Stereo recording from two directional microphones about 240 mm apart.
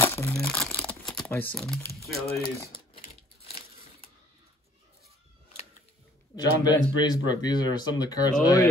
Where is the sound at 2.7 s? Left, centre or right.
Left.